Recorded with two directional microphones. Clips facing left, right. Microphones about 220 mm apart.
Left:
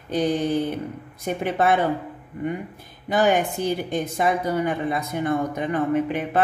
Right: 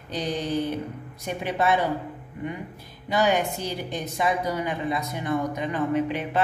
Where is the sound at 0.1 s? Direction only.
55° left (ahead or behind).